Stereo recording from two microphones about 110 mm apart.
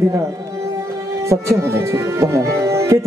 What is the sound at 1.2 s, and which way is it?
Speech, 25° right (ahead or behind).